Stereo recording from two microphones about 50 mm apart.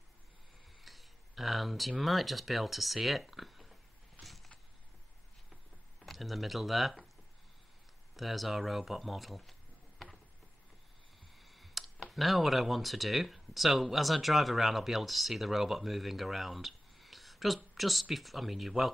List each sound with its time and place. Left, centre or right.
0.8 s speech: centre
4.2 s creak: centre
5.9 s speech: centre
8.2 s speech: centre
11.3 s a sound: centre
12.1 s speech: centre